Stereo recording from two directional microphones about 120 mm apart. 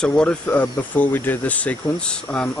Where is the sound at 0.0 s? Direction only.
10° left (ahead or behind).